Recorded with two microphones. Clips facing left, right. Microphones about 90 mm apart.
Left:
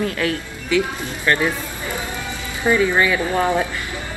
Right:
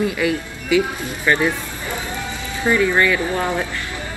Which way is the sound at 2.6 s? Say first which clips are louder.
Even; 10° left (ahead or behind).